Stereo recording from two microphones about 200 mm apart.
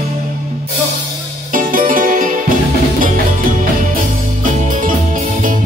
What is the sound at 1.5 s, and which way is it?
Music, 45° right (ahead or behind).